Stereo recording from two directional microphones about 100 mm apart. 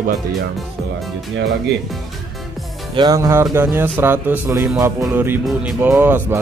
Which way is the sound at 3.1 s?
35° right (ahead or behind).